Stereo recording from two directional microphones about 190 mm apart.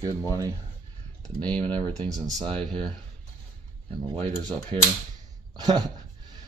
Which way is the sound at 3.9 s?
25° right (ahead or behind).